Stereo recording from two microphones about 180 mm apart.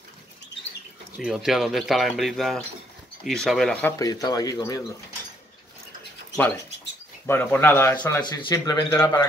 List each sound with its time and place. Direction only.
1.1 s speech: 5° right (ahead or behind)
4.0 s speech: 20° left (ahead or behind)
6.3 s speech: 10° left (ahead or behind)
8.2 s speech: 25° left (ahead or behind)